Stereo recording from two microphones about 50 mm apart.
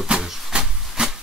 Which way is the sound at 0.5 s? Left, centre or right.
Centre.